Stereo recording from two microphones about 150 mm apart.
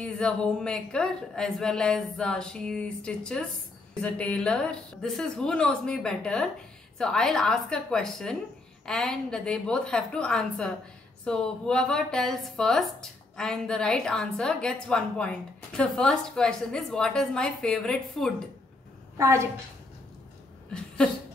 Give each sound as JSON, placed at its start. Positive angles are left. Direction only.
{"t": 0.0, "sound": "a woman's voice", "side_deg": 5}
{"t": 19.1, "sound": "a woman's voice", "side_deg": -20}